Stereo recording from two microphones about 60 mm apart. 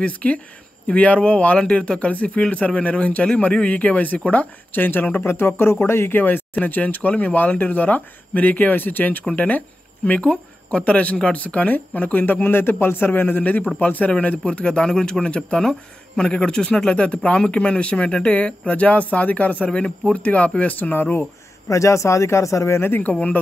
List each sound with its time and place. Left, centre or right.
0.0 s speech: left
21.6 s speech: left
22.8 s speech: left